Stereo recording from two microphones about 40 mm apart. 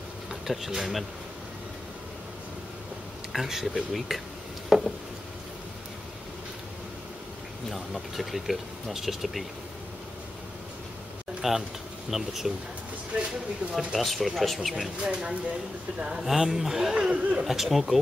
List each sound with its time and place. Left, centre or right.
0.3 s speech: centre
3.3 s speech: centre
4.6 s a sound: centre
7.7 s speech: centre
11.4 s speech: centre
13.1 s speech: right
13.9 s speech: centre
15.0 s speech: right
16.2 s speech: centre
17.1 s speech: right
17.5 s speech: centre